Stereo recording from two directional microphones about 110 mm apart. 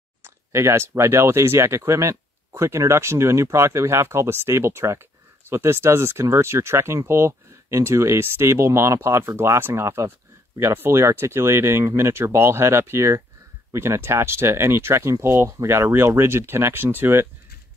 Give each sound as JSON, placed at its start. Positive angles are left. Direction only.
{"t": 0.2, "sound": "speech", "side_deg": -25}